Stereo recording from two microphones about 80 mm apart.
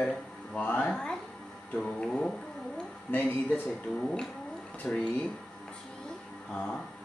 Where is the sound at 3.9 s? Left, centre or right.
Centre.